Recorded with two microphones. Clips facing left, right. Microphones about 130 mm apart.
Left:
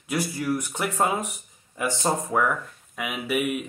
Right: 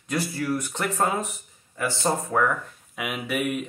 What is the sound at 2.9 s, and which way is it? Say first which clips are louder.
Speech: left 1 dB; centre (ahead or behind).